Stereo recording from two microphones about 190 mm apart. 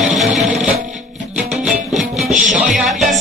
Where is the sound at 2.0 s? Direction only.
Centre (ahead or behind).